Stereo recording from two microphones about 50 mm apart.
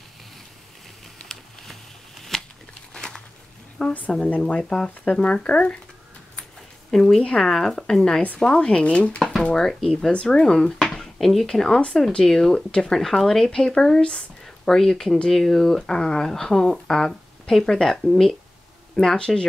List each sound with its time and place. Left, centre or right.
1.3 s a sound: centre
3.8 s speech: centre
7.0 s speech: centre
8.5 s speech: left
9.2 s speech: centre
10.8 s dishes: centre
11.4 s speech: centre